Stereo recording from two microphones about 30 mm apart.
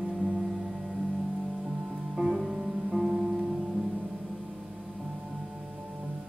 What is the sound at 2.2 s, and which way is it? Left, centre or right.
Music, right.